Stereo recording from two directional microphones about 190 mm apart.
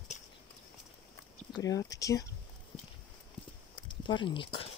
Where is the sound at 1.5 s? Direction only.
20° left (ahead or behind).